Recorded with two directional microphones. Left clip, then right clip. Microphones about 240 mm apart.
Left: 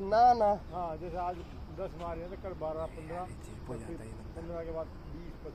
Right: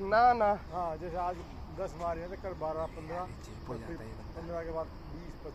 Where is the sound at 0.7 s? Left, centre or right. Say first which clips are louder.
Right 2 dB; centre.